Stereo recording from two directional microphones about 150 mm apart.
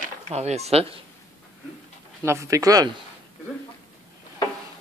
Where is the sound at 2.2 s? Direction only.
20° right (ahead or behind).